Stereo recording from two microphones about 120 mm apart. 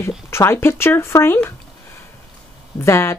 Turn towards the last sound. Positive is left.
turn(degrees=20)  # may be behind; listen again after turning